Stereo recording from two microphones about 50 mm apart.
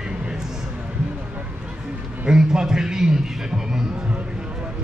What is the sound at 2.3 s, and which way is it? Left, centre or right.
A man's voice, centre.